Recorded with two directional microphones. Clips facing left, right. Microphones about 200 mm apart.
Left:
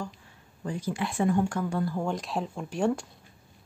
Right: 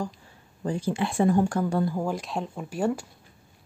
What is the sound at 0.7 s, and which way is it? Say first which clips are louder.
Speech: right 4 dB; 30° right (ahead or behind).